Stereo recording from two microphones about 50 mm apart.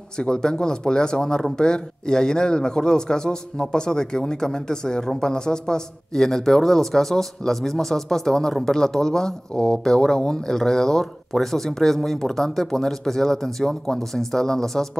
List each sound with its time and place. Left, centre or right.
0.2 s a man's voice: centre